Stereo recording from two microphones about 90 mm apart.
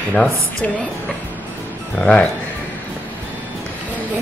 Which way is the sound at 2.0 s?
10° left (ahead or behind).